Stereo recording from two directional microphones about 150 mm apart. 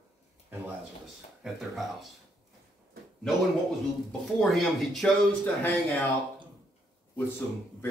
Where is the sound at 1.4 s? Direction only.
Centre (ahead or behind).